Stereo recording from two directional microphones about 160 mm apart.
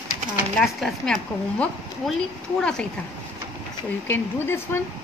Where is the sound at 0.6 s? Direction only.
5° left (ahead or behind).